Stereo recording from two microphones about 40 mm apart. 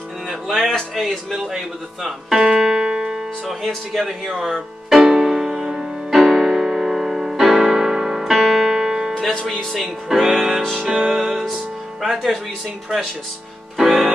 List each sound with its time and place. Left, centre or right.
0.5 s speech: centre
2.0 s music: centre
3.4 s speech: centre
5.0 s music: centre
6.1 s piano: centre
9.3 s speech: centre
9.8 s music: centre
12.0 s speech: centre
13.7 s music: centre